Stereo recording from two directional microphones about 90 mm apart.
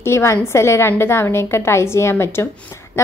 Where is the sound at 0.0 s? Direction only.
30° left (ahead or behind).